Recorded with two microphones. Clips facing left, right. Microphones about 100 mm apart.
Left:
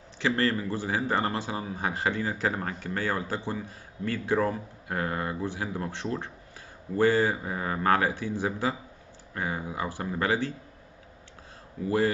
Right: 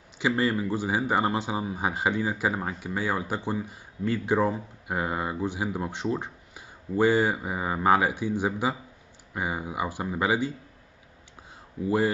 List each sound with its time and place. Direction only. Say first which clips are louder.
0.2 s speech: right 1 dB; 15° right (ahead or behind)
11.8 s speech: right 3 dB; 15° right (ahead or behind)